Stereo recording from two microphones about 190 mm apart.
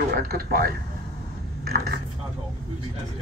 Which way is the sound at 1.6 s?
55° right (ahead or behind).